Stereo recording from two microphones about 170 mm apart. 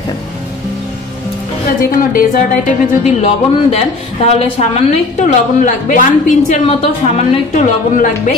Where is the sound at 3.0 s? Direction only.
40° left (ahead or behind).